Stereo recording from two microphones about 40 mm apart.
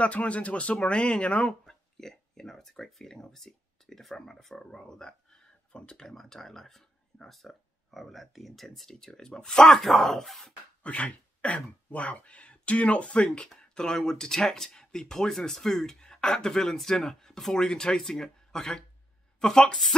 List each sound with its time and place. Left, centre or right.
0.0 s speech: left
1.7 s speech: centre
6.0 s speech: centre
10.8 s speech: left; by 19.8 s centre